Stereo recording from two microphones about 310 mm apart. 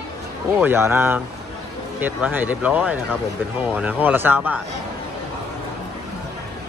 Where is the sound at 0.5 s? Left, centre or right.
Centre.